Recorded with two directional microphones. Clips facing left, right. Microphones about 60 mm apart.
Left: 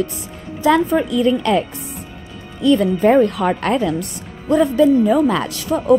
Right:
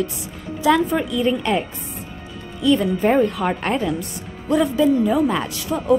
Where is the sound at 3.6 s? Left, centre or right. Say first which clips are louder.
Left 4 dB; left.